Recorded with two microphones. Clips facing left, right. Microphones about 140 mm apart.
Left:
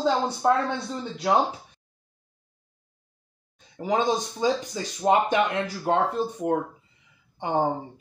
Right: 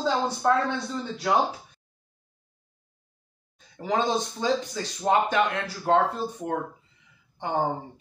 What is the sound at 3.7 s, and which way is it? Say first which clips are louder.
Speech: left 1 dB; 15° left (ahead or behind).